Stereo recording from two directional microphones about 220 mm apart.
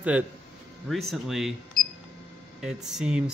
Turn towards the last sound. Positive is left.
turn(degrees=-5)  # may be behind; listen again after turning